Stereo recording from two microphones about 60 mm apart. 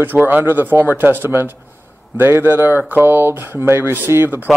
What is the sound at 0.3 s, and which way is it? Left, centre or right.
Speech, right.